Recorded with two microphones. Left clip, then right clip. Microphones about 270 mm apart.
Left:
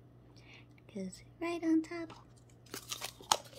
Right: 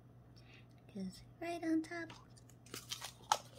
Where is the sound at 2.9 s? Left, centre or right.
Left.